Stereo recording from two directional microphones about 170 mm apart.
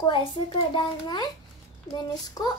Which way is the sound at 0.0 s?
30° left (ahead or behind).